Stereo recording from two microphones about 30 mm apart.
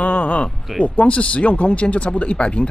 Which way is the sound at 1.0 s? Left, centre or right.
Left.